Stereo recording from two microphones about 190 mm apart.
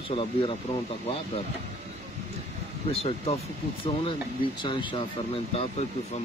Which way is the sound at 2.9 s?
30° left (ahead or behind).